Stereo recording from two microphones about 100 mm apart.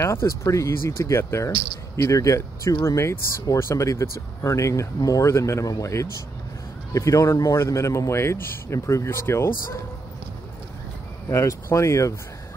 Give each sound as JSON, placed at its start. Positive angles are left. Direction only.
{"t": 0.0, "sound": "speech", "side_deg": 25}
{"t": 11.2, "sound": "speech", "side_deg": 30}